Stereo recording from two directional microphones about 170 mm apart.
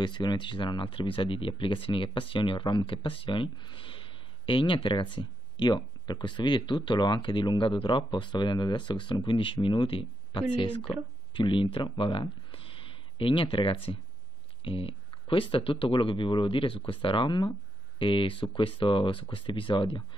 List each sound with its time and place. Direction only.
0.0 s speech: 25° left (ahead or behind)